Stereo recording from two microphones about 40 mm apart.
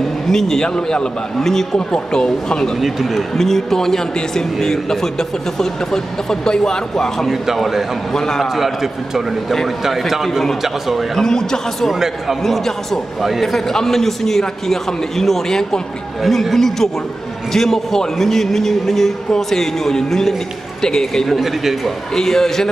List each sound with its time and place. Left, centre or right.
0.3 s a man's voice: centre
0.7 s a man's voice: left
1.4 s a man's voice: centre
2.8 s a man's voice: centre
3.3 s a man's voice: centre
7.2 s a man's voice: centre
8.1 s a man's voice: centre
8.4 s a man's voice: centre
11.1 s a man's voice: centre
11.9 s a man's voice: centre
12.5 s a man's voice: centre
21.4 s a man's voice: centre
22.1 s a man's voice: centre